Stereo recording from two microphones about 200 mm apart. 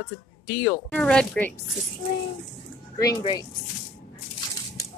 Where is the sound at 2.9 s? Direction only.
20° left (ahead or behind).